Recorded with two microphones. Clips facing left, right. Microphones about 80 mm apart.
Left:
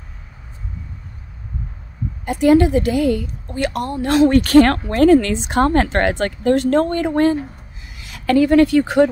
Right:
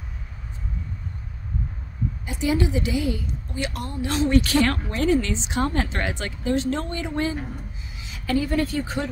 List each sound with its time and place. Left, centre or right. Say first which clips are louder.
2.2 s a woman's voice: left 11 dB; left
8.0 s a woman's voice: left 9 dB; left